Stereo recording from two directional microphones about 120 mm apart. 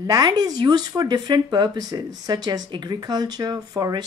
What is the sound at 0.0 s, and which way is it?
Speech, 35° right (ahead or behind).